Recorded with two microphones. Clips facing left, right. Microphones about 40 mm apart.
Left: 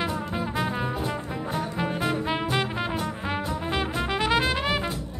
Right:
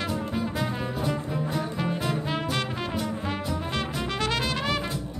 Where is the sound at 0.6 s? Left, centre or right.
Centre.